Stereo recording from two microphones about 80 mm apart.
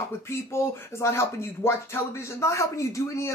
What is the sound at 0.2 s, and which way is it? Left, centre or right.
Speech, left.